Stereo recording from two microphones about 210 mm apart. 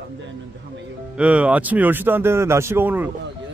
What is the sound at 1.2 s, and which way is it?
Speech, 5° right (ahead or behind).